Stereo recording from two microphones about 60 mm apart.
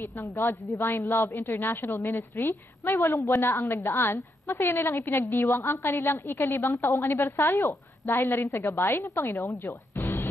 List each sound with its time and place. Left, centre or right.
0.0 s a woman's voice: left
3.2 s a woman's voice: left
3.4 s a woman's voice: left
9.0 s a woman's voice: left
9.7 s music: left